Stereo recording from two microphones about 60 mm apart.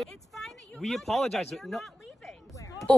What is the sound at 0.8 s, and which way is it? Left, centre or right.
Speech, centre.